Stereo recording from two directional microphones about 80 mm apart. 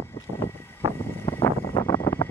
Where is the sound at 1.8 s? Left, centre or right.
Left.